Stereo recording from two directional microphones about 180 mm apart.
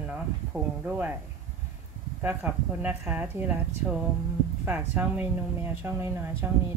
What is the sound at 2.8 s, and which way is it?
Speech, 5° right (ahead or behind).